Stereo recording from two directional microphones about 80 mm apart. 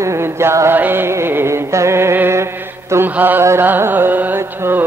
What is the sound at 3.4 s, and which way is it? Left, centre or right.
Carnatic music, right.